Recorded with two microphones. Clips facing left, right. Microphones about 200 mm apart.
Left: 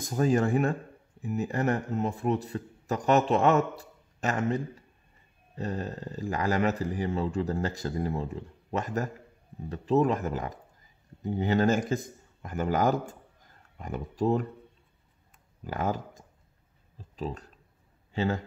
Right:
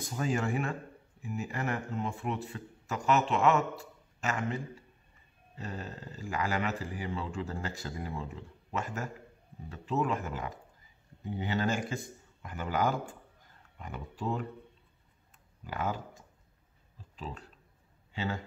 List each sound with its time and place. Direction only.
0.0 s a man's voice: 40° left (ahead or behind)
15.6 s a man's voice: 45° left (ahead or behind)